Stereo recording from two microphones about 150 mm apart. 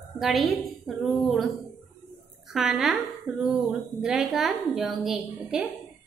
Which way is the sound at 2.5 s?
Centre (ahead or behind).